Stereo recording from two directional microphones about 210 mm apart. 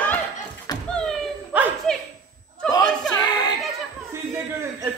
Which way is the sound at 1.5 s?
10° right (ahead or behind).